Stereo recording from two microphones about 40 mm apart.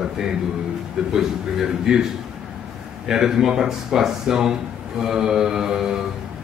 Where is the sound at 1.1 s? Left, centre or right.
Centre.